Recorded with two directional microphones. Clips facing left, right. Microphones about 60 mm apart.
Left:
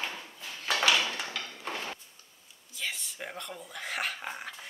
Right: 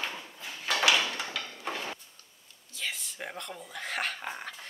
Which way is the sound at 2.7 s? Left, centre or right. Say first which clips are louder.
Even; centre.